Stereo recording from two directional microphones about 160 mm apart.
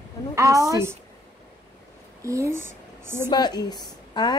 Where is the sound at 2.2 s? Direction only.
20° right (ahead or behind).